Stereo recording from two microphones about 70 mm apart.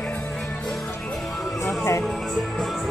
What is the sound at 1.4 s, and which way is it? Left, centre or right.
Music, centre.